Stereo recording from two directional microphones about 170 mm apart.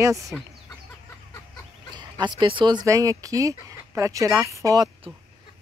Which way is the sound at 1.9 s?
25° right (ahead or behind).